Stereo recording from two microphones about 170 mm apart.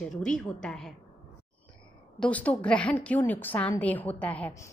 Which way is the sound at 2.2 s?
10° left (ahead or behind).